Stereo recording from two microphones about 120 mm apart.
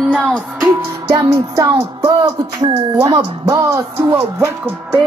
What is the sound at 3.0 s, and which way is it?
Speech, 30° right (ahead or behind).